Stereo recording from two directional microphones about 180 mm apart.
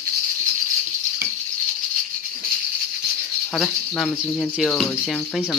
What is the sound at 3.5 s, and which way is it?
Speech, centre (ahead or behind).